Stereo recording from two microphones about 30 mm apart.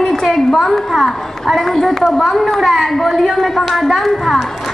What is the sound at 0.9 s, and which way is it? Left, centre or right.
A woman's voice, centre.